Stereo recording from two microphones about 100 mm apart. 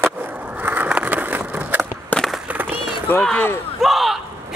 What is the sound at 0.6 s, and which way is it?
Skateboard, 15° right (ahead or behind).